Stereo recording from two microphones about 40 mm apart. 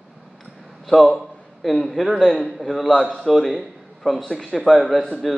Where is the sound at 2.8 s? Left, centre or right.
Centre.